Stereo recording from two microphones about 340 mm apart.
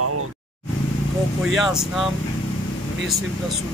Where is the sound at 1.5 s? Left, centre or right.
Centre.